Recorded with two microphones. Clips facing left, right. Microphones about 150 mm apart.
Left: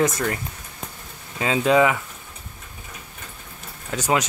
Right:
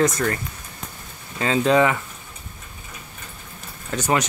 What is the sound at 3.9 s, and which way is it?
Speech, 5° left (ahead or behind).